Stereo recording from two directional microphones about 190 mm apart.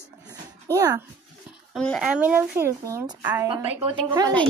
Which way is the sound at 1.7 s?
Centre (ahead or behind).